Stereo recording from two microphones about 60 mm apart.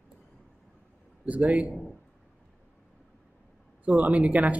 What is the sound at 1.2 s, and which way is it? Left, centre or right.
Speech, right.